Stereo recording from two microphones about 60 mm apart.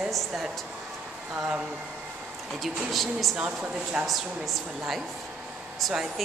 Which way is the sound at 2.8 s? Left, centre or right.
Centre.